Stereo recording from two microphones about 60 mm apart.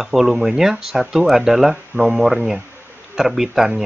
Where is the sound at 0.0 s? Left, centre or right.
Centre.